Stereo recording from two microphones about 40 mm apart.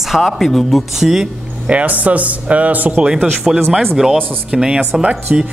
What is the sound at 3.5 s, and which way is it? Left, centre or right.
Speech, centre.